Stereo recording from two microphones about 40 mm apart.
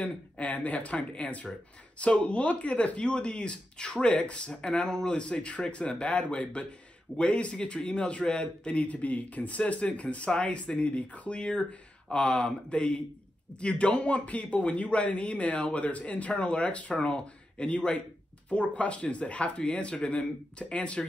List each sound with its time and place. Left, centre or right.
0.0 s speech: left